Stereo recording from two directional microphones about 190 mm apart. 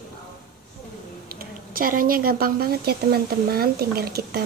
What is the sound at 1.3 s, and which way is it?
Speech, 50° right (ahead or behind).